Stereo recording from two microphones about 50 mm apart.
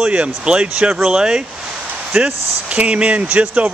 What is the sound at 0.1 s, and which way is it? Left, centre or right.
Speech, right.